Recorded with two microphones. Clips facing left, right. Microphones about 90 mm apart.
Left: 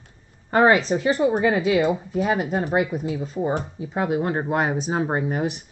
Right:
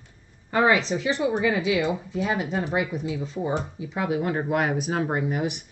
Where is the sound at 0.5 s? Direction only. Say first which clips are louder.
Left 4 dB; 40° left (ahead or behind).